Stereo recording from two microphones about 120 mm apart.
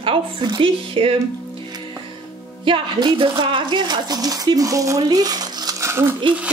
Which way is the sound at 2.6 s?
40° right (ahead or behind).